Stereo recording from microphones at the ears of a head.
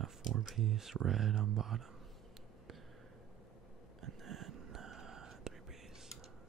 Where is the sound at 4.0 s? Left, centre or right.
Right.